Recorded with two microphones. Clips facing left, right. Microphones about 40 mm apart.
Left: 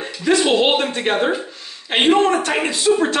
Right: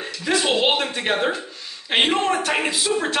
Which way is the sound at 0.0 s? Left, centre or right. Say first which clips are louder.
Left 5 dB; centre.